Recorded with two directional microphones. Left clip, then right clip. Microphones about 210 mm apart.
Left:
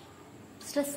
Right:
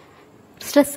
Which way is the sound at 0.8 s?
45° right (ahead or behind).